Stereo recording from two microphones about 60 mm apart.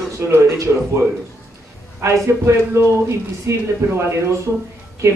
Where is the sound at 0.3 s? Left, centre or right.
Right.